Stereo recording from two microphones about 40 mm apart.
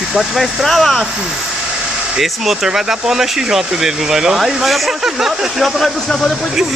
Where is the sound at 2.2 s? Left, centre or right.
Centre.